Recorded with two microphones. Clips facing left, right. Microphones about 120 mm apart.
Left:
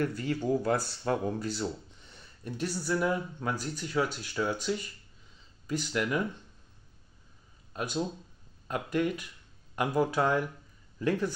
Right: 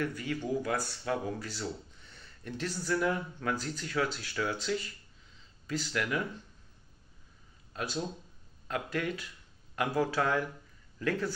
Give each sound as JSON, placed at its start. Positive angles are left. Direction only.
{"t": 0.0, "sound": "speech", "side_deg": 35}
{"t": 7.7, "sound": "speech", "side_deg": 20}